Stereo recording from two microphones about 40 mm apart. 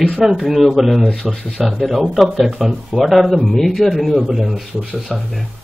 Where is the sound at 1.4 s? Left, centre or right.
Centre.